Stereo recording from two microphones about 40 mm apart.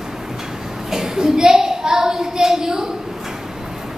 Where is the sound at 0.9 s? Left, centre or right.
Centre.